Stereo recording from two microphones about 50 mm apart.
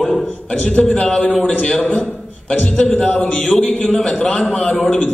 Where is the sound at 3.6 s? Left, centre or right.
Left.